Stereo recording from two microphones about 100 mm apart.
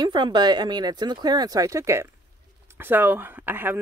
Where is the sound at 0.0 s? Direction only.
50° right (ahead or behind).